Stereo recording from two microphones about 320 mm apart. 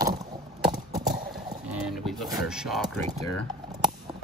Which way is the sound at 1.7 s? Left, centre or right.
Centre.